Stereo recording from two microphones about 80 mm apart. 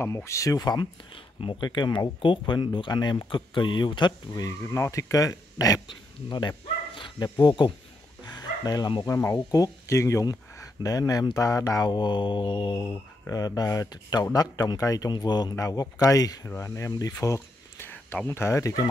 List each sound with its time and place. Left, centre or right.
0.0 s speech: left
0.6 s speech: left
3.3 s speech: left
4.7 s speech: left
6.2 s speech: left
8.2 s dog: left
9.0 s speech: left
13.3 s speech: left
15.5 s speech: left
16.4 s speech: left
17.7 s speech: left